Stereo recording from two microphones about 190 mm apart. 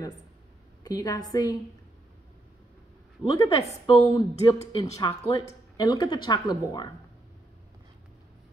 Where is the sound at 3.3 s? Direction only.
20° left (ahead or behind).